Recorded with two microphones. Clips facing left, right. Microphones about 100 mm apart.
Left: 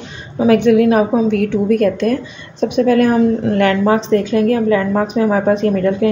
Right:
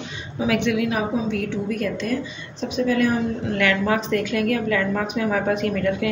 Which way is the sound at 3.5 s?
35° left (ahead or behind).